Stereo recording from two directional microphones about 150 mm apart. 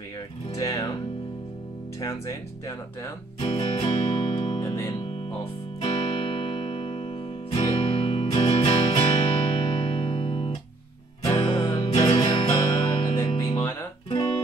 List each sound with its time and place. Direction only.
0.6 s music: 20° left (ahead or behind)
2.0 s speech: 20° left (ahead or behind)
3.3 s music: 40° left (ahead or behind)
4.6 s music: 20° left (ahead or behind)
5.4 s music: 40° left (ahead or behind)
14.0 s guitar: 40° left (ahead or behind)